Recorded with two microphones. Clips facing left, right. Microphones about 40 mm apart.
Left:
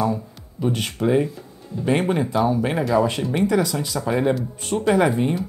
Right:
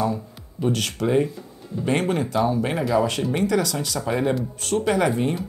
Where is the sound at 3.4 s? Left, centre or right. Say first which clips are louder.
Left 3 dB; centre.